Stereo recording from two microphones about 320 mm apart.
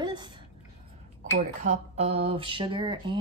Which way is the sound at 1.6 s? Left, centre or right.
Right.